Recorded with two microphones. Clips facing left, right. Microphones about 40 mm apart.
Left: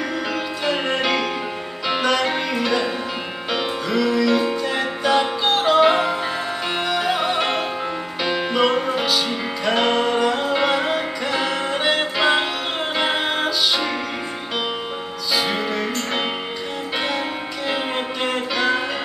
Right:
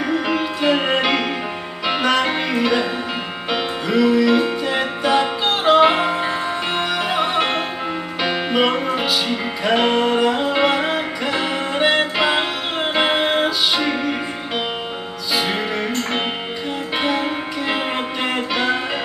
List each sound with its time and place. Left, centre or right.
0.1 s music: centre
15.3 s music: centre
18.2 s music: centre